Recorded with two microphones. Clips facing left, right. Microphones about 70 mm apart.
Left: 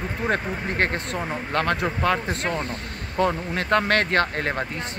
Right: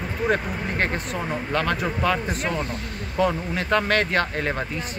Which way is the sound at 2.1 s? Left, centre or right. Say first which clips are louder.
Even; left.